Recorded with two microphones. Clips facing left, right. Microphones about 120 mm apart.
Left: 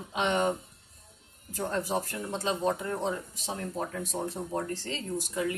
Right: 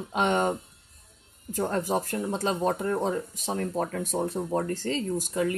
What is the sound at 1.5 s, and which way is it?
Speech, 50° right (ahead or behind).